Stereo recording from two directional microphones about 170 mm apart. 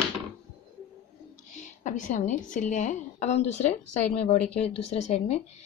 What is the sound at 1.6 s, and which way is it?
A woman's voice, 50° left (ahead or behind).